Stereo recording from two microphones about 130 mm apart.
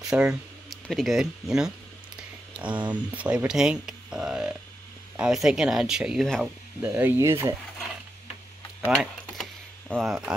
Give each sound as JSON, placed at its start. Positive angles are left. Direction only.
{"t": 0.1, "sound": "speech", "side_deg": -5}
{"t": 2.9, "sound": "speech", "side_deg": -10}
{"t": 6.8, "sound": "speech", "side_deg": -15}
{"t": 8.8, "sound": "a sound", "side_deg": -5}
{"t": 9.8, "sound": "speech", "side_deg": 0}